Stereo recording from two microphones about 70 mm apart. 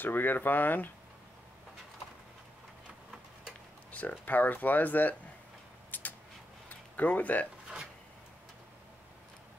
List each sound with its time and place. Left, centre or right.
0.0 s speech: left
3.9 s speech: left
5.9 s a sound: left